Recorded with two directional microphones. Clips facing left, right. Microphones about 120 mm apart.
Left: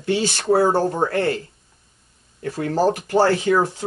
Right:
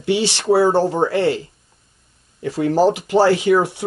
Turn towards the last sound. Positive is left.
turn(degrees=-10)  # may be behind; listen again after turning